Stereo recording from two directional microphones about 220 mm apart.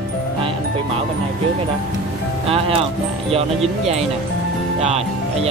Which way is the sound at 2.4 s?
25° right (ahead or behind).